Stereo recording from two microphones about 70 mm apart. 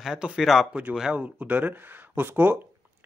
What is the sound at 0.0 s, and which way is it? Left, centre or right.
Speech, centre.